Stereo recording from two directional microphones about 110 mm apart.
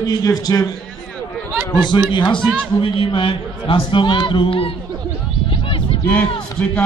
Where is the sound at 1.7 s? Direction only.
45° left (ahead or behind).